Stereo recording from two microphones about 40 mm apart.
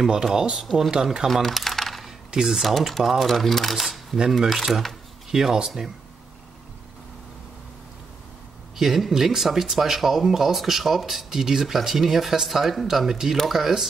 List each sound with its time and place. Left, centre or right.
0.2 s speech: centre
1.0 s speech: centre
1.4 s typing: centre
2.3 s speech: centre
5.3 s speech: centre
8.7 s speech: centre